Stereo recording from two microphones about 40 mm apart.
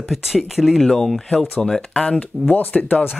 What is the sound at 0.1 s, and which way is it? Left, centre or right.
Speech, centre.